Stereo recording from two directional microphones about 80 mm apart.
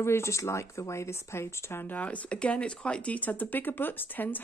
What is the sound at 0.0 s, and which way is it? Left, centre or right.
Speech, left.